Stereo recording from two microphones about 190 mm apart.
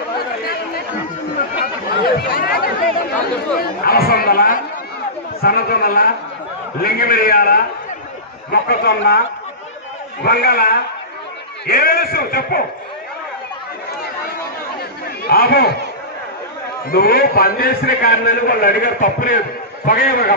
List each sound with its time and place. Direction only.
2.0 s a man's voice: 55° left (ahead or behind)
10.2 s a man's voice: 55° left (ahead or behind)
15.2 s speech: 55° left (ahead or behind)
16.9 s a man's voice: 55° left (ahead or behind)